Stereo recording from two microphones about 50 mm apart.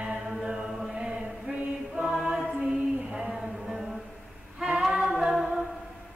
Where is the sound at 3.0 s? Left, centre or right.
Centre.